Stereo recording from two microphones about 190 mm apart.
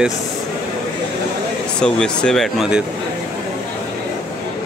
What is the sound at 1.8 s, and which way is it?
Speech, 5° left (ahead or behind).